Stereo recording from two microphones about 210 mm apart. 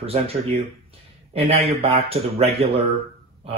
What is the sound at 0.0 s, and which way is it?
Speech, 30° right (ahead or behind).